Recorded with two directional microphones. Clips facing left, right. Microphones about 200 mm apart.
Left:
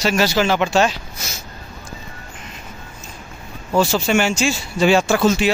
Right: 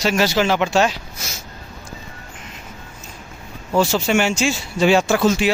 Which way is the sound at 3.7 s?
20° right (ahead or behind).